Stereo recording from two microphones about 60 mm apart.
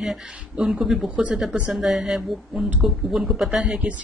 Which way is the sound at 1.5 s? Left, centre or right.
Centre.